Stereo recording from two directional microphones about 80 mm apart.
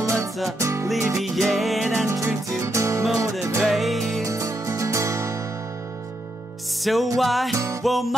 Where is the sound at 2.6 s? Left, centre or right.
Right.